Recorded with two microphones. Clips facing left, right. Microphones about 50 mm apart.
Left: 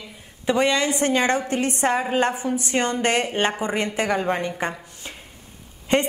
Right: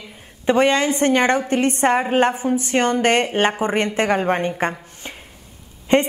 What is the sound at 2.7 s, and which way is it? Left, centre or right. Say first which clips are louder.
Speech: right 4 dB; right.